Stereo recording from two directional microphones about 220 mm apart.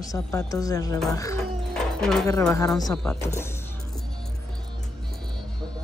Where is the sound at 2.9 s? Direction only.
Centre (ahead or behind).